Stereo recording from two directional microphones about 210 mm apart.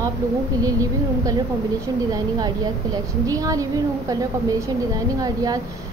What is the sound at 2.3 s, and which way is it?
A woman's voice, 20° right (ahead or behind).